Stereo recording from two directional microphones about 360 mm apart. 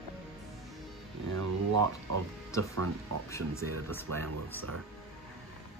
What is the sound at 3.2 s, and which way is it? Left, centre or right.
Speech, centre.